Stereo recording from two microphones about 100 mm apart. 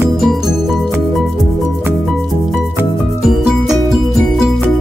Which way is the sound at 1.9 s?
Centre (ahead or behind).